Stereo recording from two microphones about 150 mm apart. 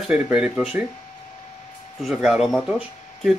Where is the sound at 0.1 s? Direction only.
5° right (ahead or behind).